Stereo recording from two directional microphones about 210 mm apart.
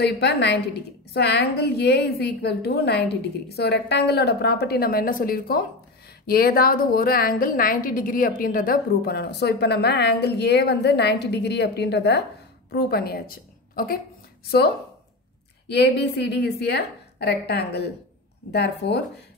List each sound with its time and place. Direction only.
0.0 s a woman's voice: 50° left (ahead or behind)
15.7 s a woman's voice: 55° left (ahead or behind)